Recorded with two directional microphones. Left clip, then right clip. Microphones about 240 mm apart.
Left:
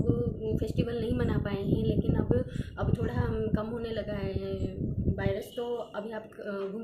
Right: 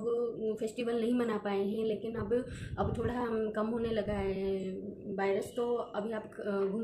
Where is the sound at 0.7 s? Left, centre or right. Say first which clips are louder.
Even; centre.